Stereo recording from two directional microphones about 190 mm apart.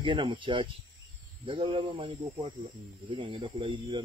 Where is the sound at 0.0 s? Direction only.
25° right (ahead or behind).